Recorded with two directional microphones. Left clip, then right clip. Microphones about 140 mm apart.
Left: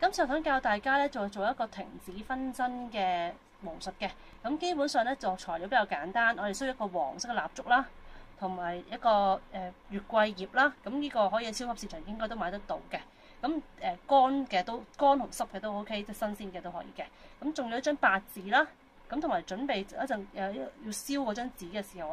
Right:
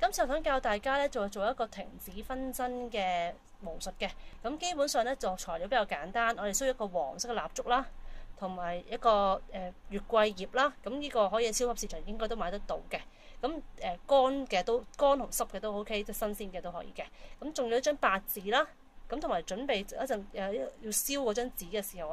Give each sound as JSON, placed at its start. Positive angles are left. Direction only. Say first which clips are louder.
{"t": 0.0, "sound": "speech", "louder": "left 1 dB", "side_deg": -55}